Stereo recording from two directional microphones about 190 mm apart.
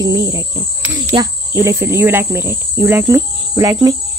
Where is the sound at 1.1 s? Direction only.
15° right (ahead or behind).